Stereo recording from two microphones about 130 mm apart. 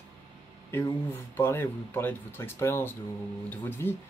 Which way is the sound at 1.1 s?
20° left (ahead or behind).